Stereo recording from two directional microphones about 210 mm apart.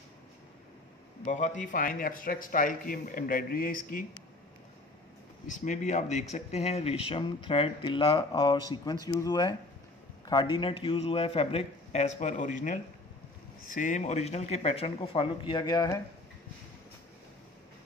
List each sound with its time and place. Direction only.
1.2 s speech: 35° left (ahead or behind)
5.5 s a man's voice: 35° left (ahead or behind); by 16.0 s 20° left (ahead or behind)